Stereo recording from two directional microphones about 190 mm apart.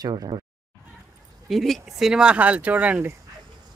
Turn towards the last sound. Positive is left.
turn(degrees=-10)  # may be behind; listen again after turning